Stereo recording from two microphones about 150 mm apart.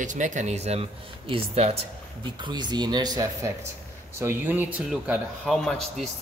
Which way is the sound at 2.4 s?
30° right (ahead or behind).